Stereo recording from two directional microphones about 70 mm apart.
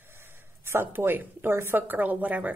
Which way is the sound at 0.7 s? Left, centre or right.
Right.